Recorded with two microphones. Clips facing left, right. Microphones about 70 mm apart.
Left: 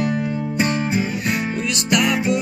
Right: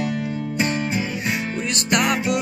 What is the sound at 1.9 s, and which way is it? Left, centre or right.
Music, right.